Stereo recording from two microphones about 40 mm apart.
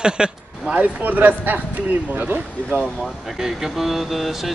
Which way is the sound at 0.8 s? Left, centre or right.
Right.